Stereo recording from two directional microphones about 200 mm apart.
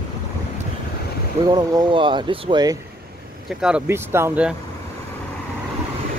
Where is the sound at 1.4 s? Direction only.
20° right (ahead or behind).